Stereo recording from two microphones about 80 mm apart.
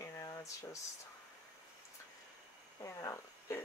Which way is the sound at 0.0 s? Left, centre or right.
Left.